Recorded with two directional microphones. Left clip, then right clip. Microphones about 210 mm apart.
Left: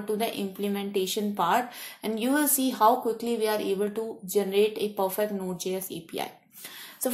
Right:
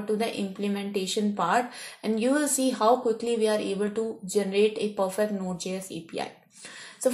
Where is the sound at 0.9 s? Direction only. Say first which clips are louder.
Left 4 dB; centre (ahead or behind).